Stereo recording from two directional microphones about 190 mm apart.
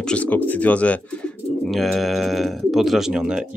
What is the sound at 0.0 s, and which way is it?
Speech, 5° left (ahead or behind).